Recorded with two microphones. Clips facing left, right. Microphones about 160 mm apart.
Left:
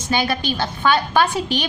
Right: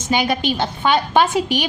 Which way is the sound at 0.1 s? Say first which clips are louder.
Right 2 dB; 20° right (ahead or behind).